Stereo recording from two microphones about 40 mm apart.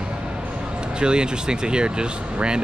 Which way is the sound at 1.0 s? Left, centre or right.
Right.